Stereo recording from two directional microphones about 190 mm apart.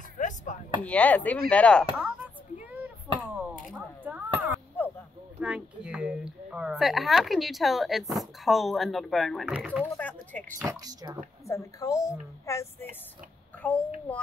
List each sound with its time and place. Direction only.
0.2 s chopping: 45° left (ahead or behind)
0.8 s a woman's voice: 5° left (ahead or behind)
2.2 s chop: 10° right (ahead or behind)
3.7 s a sound: 10° right (ahead or behind)
5.4 s speech: 5° right (ahead or behind)
9.8 s a woman's voice: 10° left (ahead or behind)
10.6 s speech: 15° right (ahead or behind)
11.4 s a woman's voice: 15° left (ahead or behind)